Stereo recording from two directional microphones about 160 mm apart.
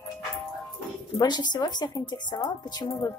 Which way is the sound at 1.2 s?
25° left (ahead or behind).